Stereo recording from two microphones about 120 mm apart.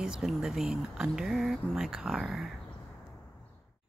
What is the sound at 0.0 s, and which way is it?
Speech, 5° right (ahead or behind).